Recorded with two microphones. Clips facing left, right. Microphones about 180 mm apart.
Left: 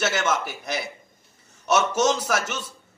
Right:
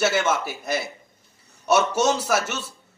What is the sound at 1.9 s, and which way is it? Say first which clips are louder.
Speech: right 1 dB; 10° right (ahead or behind).